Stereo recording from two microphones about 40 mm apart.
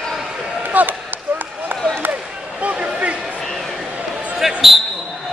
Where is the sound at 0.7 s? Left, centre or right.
Right.